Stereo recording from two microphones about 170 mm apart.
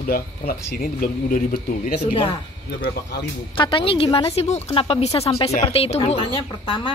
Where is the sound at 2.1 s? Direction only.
30° left (ahead or behind).